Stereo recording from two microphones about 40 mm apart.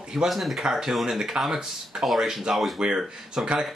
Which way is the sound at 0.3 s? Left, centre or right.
Centre.